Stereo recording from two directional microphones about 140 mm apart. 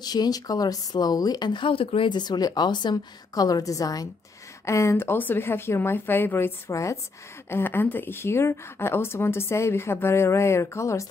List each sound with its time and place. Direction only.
0.0 s a woman's voice: 30° left (ahead or behind)